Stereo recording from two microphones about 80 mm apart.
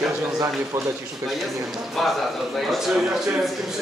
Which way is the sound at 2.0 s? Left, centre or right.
Centre.